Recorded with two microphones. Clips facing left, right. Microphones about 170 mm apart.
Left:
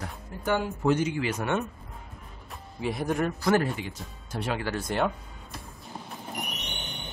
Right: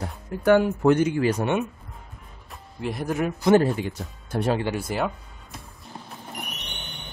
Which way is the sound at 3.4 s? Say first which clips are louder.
Right 10 dB; 25° right (ahead or behind).